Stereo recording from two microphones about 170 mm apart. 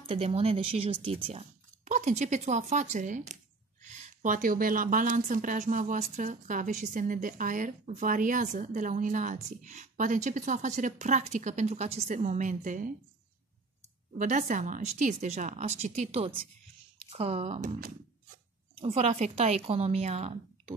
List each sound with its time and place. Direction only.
0.0 s a woman's voice: 35° right (ahead or behind)
14.1 s a woman's voice: 45° right (ahead or behind)
17.6 s speech: 55° right (ahead or behind)
18.8 s speech: 40° right (ahead or behind)